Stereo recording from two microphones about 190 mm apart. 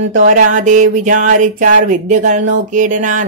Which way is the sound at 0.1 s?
40° right (ahead or behind).